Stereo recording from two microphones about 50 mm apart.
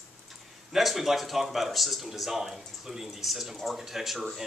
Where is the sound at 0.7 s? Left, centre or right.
Centre.